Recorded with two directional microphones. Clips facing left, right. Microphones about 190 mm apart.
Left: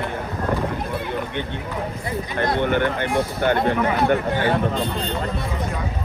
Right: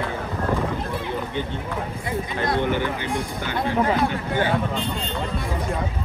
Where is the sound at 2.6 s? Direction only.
60° left (ahead or behind).